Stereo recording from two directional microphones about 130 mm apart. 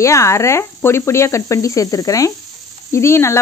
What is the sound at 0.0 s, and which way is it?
Speech, 20° left (ahead or behind).